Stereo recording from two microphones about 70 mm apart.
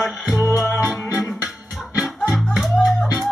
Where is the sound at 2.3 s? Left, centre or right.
Centre.